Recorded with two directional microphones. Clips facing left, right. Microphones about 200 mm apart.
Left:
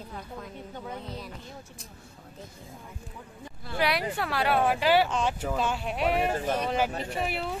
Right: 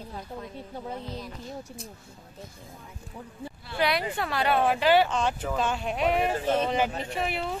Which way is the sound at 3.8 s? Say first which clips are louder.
Right 1 dB; 5° left (ahead or behind).